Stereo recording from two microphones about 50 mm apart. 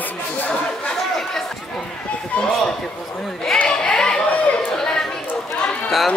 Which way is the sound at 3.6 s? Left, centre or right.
Centre.